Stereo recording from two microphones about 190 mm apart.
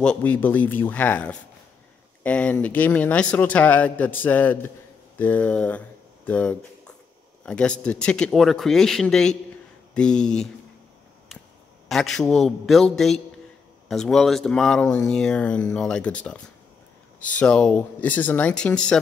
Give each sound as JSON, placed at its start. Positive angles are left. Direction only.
{"t": 0.0, "sound": "speech", "side_deg": 5}
{"t": 11.9, "sound": "speech", "side_deg": 0}